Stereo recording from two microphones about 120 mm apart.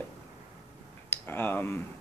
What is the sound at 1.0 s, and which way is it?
Speech, 20° left (ahead or behind).